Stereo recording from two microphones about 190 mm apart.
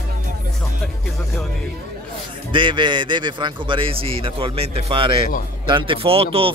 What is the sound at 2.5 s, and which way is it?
A man's voice, 25° right (ahead or behind).